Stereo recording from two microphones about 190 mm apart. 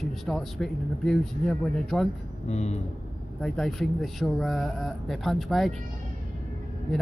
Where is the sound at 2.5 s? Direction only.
35° left (ahead or behind).